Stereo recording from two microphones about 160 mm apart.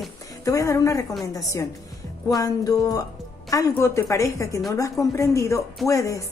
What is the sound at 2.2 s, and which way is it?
Speech, 20° left (ahead or behind).